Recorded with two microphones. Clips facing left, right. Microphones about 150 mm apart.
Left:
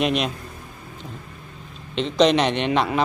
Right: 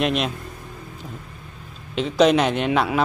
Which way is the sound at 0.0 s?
Centre (ahead or behind).